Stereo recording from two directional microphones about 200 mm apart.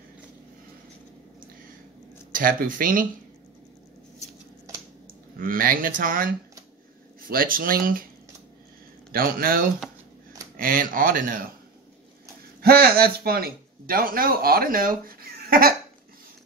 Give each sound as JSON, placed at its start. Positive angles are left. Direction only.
{"t": 2.3, "sound": "a man's voice", "side_deg": -45}
{"t": 5.4, "sound": "a man's voice", "side_deg": -45}
{"t": 9.1, "sound": "a man's voice", "side_deg": -45}
{"t": 12.6, "sound": "a man's voice", "side_deg": -50}